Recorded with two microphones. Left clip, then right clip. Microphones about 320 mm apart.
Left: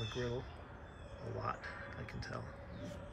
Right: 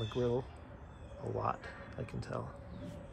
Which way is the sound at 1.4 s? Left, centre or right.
Centre.